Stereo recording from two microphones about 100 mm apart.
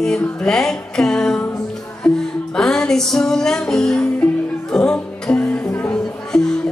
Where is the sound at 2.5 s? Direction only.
5° left (ahead or behind).